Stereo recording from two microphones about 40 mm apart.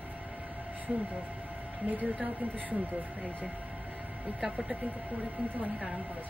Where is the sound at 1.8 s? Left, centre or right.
Right.